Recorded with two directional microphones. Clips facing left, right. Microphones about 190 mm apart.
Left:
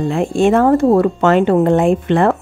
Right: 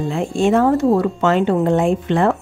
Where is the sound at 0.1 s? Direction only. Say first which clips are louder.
Left 3 dB; 60° left (ahead or behind).